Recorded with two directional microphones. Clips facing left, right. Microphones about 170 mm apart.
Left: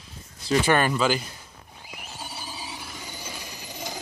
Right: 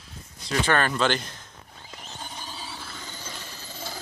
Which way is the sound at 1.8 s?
10° left (ahead or behind).